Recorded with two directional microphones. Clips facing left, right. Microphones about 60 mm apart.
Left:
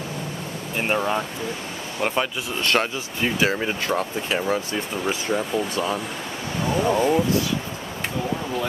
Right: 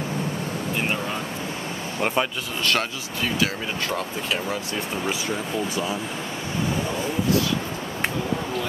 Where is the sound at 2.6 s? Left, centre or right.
Left.